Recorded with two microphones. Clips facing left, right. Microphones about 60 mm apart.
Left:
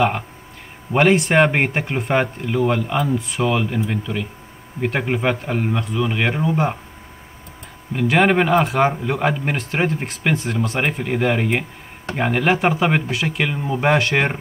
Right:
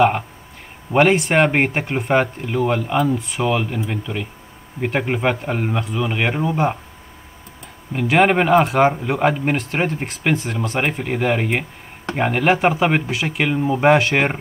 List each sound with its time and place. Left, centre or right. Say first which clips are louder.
0.9 s speech: even; centre
7.9 s speech: right 1 dB; centre